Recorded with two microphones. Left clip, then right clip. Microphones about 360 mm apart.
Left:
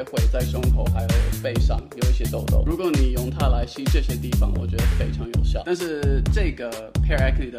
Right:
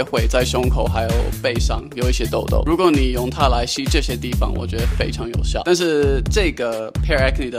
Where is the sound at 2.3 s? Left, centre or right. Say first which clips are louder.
Right 9 dB; right.